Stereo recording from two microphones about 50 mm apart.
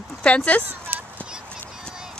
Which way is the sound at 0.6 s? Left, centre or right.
Right.